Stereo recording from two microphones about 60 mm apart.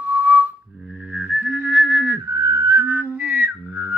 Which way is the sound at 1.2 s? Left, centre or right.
Right.